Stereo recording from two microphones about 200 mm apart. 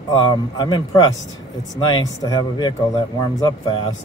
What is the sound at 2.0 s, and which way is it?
Speech, 20° left (ahead or behind).